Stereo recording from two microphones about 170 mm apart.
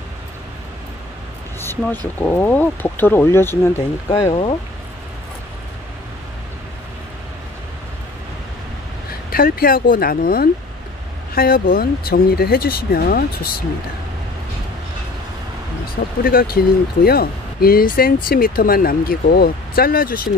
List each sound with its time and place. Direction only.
1.6 s a sound: 15° left (ahead or behind)
2.1 s speech: 10° left (ahead or behind)
4.2 s speech: 30° left (ahead or behind)
9.3 s speech: 60° left (ahead or behind)
16.3 s speech: 60° left (ahead or behind)